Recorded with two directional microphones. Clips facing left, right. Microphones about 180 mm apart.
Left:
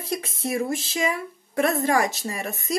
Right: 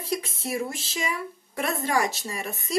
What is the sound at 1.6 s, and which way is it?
Speech, 50° left (ahead or behind).